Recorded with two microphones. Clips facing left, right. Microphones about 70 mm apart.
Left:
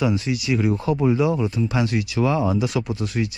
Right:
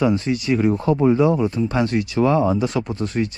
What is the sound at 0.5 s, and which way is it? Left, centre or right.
Speech, right.